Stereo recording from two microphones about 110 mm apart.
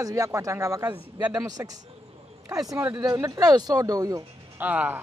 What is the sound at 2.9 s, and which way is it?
Speech, 35° right (ahead or behind).